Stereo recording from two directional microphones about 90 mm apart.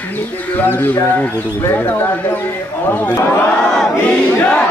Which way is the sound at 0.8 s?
25° left (ahead or behind).